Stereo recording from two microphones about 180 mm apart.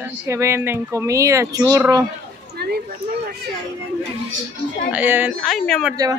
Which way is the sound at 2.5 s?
60° right (ahead or behind).